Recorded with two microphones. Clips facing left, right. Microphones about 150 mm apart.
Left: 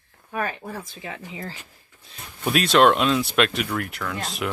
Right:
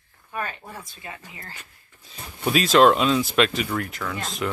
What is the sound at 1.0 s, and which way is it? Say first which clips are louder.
Speech: left 4 dB; 90° left.